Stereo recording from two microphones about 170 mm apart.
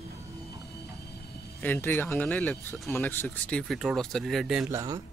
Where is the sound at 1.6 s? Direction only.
10° left (ahead or behind).